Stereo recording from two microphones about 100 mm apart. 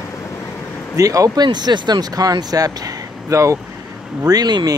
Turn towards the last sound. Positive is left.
turn(degrees=-45)  # may be behind; listen again after turning